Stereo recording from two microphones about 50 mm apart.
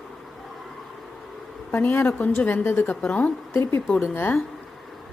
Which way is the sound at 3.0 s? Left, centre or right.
Centre.